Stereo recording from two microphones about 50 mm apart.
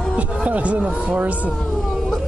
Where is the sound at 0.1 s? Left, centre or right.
Right.